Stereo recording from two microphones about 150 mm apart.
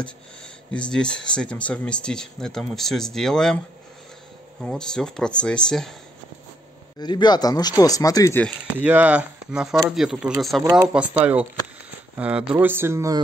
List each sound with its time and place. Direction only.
0.7 s speech: 5° left (ahead or behind)
4.6 s speech: 5° left (ahead or behind)
7.0 s speech: 30° left (ahead or behind)
8.5 s speech: 10° right (ahead or behind)
10.6 s speech: 20° right (ahead or behind)
12.2 s speech: 5° right (ahead or behind)